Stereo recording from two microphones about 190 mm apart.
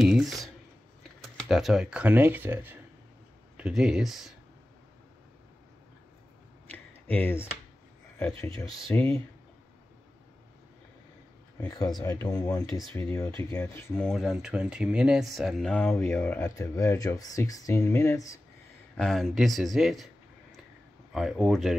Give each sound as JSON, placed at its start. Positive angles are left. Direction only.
{"t": 0.0, "sound": "a sound", "side_deg": 0}
{"t": 1.2, "sound": "speech", "side_deg": 0}
{"t": 6.7, "sound": "a sound", "side_deg": 10}
{"t": 8.2, "sound": "speech", "side_deg": 10}
{"t": 11.6, "sound": "speech", "side_deg": 20}
{"t": 14.1, "sound": "speech", "side_deg": 0}
{"t": 18.9, "sound": "speech", "side_deg": 0}
{"t": 21.1, "sound": "speech", "side_deg": 0}